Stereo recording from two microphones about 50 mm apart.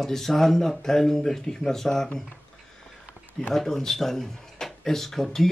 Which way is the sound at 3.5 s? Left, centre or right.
Centre.